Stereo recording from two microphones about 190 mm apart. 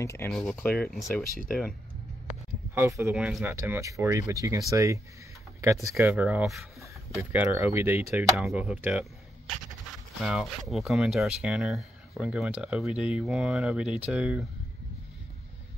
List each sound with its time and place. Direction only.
0.0 s speech: 15° left (ahead or behind)
0.3 s speech: 5° left (ahead or behind)
2.7 s speech: 15° right (ahead or behind)